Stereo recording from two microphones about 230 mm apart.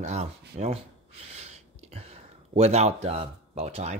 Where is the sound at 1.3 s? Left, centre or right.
Right.